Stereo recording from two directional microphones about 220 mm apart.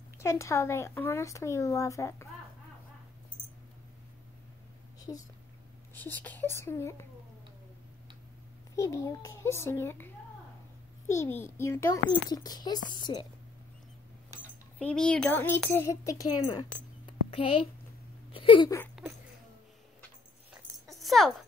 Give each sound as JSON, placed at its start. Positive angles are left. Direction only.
{"t": 0.2, "sound": "speech", "side_deg": 15}
{"t": 5.9, "sound": "speech", "side_deg": 10}
{"t": 8.7, "sound": "a woman's voice", "side_deg": 15}
{"t": 14.8, "sound": "speech", "side_deg": 5}
{"t": 17.0, "sound": "a sound", "side_deg": 25}
{"t": 18.3, "sound": "speech", "side_deg": 25}
{"t": 20.9, "sound": "rattle", "side_deg": 0}